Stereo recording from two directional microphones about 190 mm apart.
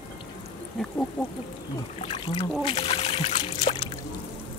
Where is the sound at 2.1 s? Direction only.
25° left (ahead or behind).